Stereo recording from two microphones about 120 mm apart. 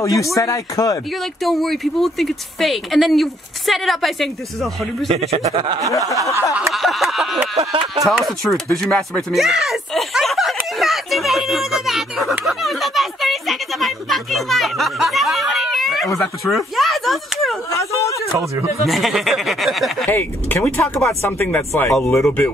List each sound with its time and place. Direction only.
0.0 s speech: 25° left (ahead or behind)
1.4 s speech: centre (ahead or behind)
5.1 s speech: 65° right (ahead or behind)
5.9 s speech: 25° left (ahead or behind)
6.7 s a sound: centre (ahead or behind)
7.5 s speech: 45° right (ahead or behind)
8.1 s speech: centre (ahead or behind)
17.6 s speech: 25° left (ahead or behind)
18.9 s speech: centre (ahead or behind)
20.1 s speech: 15° left (ahead or behind)